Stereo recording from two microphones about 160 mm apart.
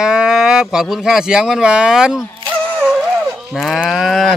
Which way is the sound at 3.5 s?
Centre (ahead or behind).